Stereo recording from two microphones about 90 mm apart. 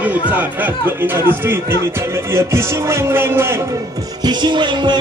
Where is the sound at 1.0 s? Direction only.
20° right (ahead or behind).